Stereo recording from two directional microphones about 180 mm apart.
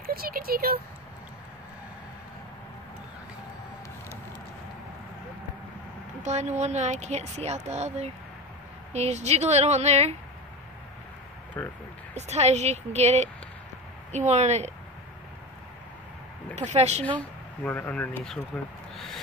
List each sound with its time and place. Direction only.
0.0 s speech: 55° right (ahead or behind)
6.2 s a woman's voice: 40° right (ahead or behind)
11.6 s speech: 10° left (ahead or behind)
12.2 s a woman's voice: 40° right (ahead or behind)
16.5 s a woman's voice: 40° right (ahead or behind)
17.6 s speech: 10° left (ahead or behind)
18.9 s a sound: centre (ahead or behind)